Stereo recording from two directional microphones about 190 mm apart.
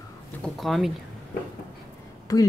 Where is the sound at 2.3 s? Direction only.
20° left (ahead or behind).